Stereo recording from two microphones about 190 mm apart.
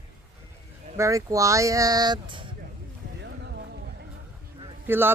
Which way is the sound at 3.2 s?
65° right (ahead or behind).